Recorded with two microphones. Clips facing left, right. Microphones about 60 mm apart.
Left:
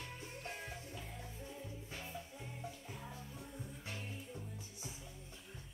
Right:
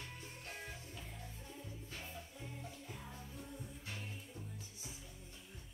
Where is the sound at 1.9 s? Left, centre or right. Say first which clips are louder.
Left 2 dB; centre.